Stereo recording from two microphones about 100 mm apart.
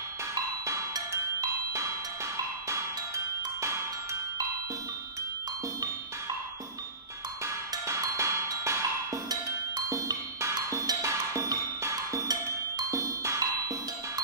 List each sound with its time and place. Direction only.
0.3 s music: 35° right (ahead or behind)
7.4 s music: 30° right (ahead or behind)